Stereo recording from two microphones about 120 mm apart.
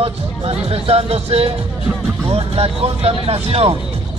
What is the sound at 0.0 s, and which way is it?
Speech, 50° right (ahead or behind).